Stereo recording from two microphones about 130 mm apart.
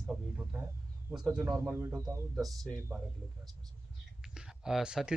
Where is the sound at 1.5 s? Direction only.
15° right (ahead or behind).